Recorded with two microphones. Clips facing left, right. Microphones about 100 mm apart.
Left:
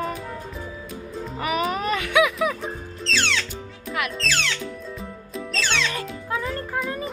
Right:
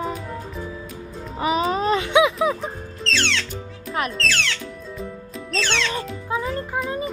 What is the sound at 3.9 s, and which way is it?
Music, 35° right (ahead or behind).